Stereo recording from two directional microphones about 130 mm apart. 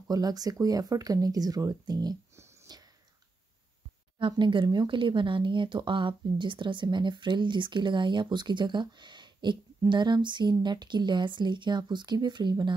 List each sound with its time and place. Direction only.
0.1 s speech: 30° right (ahead or behind)
4.3 s speech: 40° right (ahead or behind)